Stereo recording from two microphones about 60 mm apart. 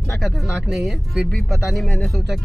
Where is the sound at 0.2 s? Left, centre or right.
Centre.